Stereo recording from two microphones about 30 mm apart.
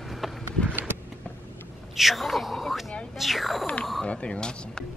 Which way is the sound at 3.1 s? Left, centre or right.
Centre.